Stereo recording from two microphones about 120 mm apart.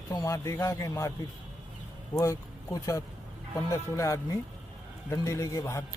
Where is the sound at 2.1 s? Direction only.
30° left (ahead or behind).